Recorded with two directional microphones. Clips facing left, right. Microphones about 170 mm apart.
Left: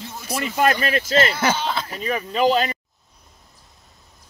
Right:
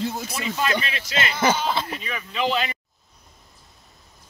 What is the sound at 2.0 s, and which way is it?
Speech, 40° left (ahead or behind).